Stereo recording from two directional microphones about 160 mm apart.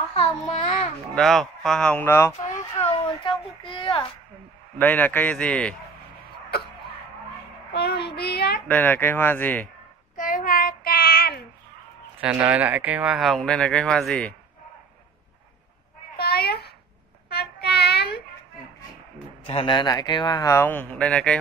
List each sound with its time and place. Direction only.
0.1 s child singing: 40° left (ahead or behind)
1.1 s speech: centre (ahead or behind)
2.9 s a sound: 35° left (ahead or behind)
3.7 s a child's voice: 30° left (ahead or behind)
4.7 s speech: 10° left (ahead or behind)
6.5 s throat clearing: 75° left (ahead or behind)
7.7 s child singing: 90° left
8.2 s a child's voice: 85° left
8.6 s speech: 10° left (ahead or behind)
10.1 s child singing: 55° left (ahead or behind)
12.2 s speech: 10° right (ahead or behind)
16.2 s a sound: 75° left (ahead or behind)
17.3 s child singing: 85° left
19.4 s speech: 35° left (ahead or behind); by 21.4 s 5° left (ahead or behind)